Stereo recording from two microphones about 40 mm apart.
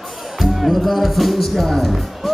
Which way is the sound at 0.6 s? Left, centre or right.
Centre.